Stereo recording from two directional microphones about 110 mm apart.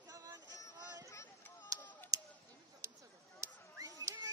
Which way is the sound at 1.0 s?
20° left (ahead or behind).